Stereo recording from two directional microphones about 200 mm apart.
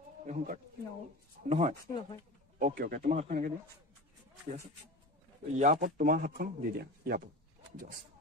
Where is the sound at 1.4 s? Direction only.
50° right (ahead or behind).